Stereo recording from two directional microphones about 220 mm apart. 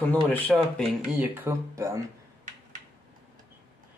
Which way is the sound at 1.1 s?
10° right (ahead or behind).